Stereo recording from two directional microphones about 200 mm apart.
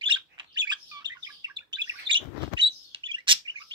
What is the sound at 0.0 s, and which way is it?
Bird, 25° right (ahead or behind).